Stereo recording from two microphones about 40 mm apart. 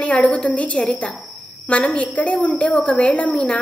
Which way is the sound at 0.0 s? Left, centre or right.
Left.